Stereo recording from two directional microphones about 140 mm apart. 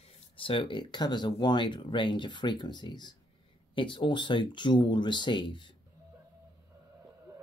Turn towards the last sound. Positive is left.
turn(degrees=35)  # may be behind; listen again after turning